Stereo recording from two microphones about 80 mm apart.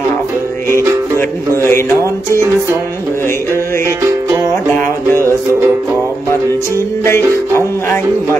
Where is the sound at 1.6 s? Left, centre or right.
Left.